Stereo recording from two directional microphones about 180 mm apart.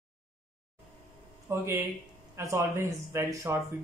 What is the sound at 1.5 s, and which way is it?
Speech, 15° right (ahead or behind).